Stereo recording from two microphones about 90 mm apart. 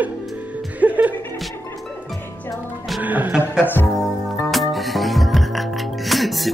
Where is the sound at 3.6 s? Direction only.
20° left (ahead or behind).